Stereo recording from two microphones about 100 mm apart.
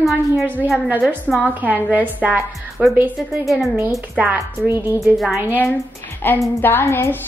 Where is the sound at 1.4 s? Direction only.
15° right (ahead or behind).